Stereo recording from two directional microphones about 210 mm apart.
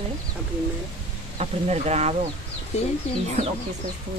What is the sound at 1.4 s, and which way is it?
Speech, 30° right (ahead or behind).